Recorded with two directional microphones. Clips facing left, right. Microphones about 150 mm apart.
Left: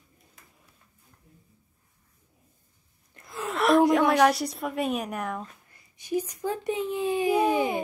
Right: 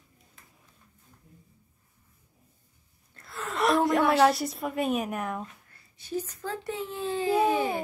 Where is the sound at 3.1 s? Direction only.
20° left (ahead or behind).